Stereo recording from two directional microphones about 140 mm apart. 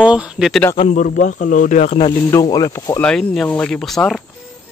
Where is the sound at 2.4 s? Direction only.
25° left (ahead or behind).